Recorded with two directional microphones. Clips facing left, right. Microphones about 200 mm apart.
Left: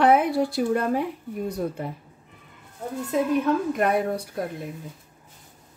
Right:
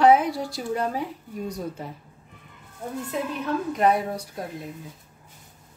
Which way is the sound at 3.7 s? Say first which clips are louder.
Even; 55° left (ahead or behind).